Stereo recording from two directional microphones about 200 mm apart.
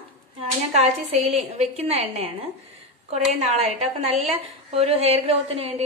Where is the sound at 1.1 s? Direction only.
35° right (ahead or behind).